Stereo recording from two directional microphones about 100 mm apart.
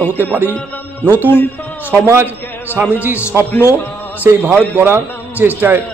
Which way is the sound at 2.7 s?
15° right (ahead or behind).